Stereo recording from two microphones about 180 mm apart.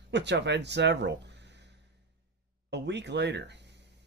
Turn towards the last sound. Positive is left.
turn(degrees=-70)  # may be behind; listen again after turning